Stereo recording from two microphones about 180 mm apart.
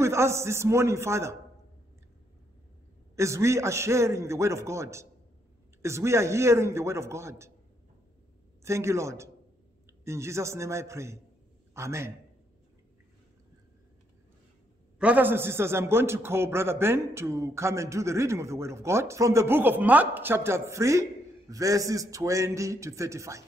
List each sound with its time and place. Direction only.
0.0 s a man's voice: 15° right (ahead or behind)
3.2 s a man's voice: 15° right (ahead or behind)
8.6 s a man's voice: 15° right (ahead or behind)
15.0 s a man's voice: 10° right (ahead or behind)